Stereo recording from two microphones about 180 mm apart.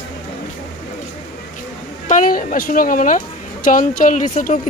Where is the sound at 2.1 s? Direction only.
45° left (ahead or behind).